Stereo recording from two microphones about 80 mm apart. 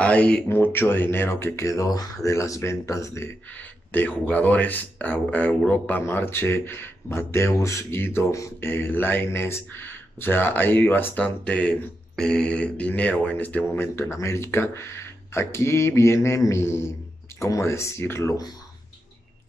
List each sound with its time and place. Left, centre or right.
0.0 s speech: centre
0.5 s speech: left
3.5 s speech: left
8.3 s mantra: left
8.5 s speech: left